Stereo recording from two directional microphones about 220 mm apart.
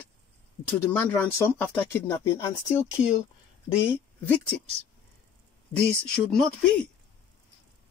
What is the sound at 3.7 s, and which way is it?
Speech, 10° left (ahead or behind).